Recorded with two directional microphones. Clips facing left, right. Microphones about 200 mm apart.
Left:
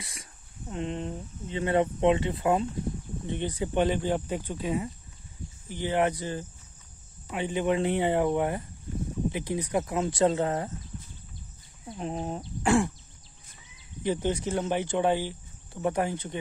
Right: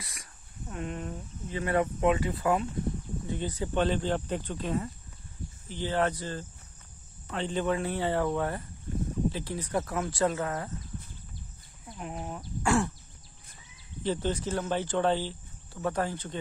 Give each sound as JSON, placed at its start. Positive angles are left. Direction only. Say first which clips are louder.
{"t": 0.0, "sound": "speech", "louder": "left 3 dB", "side_deg": 25}
{"t": 11.9, "sound": "speech", "louder": "left 5 dB", "side_deg": 30}
{"t": 14.0, "sound": "speech", "louder": "left 2 dB", "side_deg": 15}